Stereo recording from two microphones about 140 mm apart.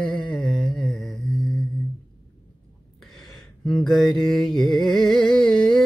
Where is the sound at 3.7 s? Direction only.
5° left (ahead or behind).